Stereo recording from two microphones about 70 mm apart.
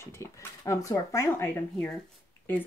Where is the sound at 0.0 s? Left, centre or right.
Left.